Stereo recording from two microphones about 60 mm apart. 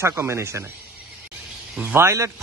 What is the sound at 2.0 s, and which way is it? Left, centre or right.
Speech, right.